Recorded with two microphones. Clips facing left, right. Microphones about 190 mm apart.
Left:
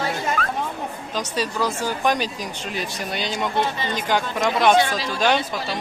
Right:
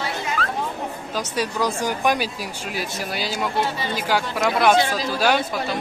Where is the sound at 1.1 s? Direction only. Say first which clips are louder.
Even; 10° right (ahead or behind).